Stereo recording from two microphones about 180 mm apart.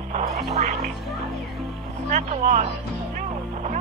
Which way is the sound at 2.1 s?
45° right (ahead or behind).